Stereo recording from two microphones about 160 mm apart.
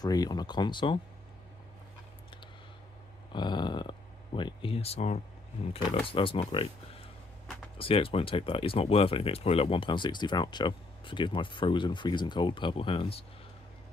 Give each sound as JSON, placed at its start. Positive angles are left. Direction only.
{"t": 0.0, "sound": "speech", "side_deg": 25}
{"t": 3.3, "sound": "a sound", "side_deg": 30}
{"t": 5.7, "sound": "speech", "side_deg": 35}